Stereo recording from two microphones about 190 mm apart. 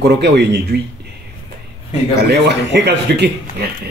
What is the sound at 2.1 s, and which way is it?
Speech, 65° right (ahead or behind).